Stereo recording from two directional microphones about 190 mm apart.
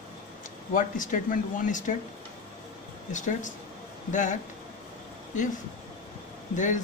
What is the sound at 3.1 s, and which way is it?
Speech, 40° left (ahead or behind).